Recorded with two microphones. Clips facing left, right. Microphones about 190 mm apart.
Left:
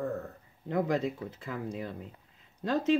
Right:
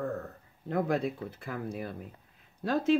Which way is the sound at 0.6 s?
15° left (ahead or behind).